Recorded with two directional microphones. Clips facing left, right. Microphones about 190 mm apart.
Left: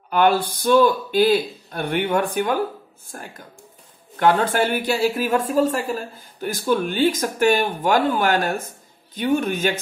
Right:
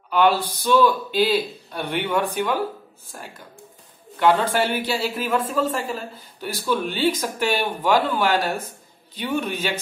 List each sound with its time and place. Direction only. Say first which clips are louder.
0.1 s speech: left 1 dB; 50° left (ahead or behind)